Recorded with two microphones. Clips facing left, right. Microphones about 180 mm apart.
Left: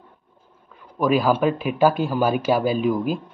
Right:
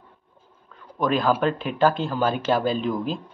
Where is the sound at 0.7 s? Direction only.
5° left (ahead or behind).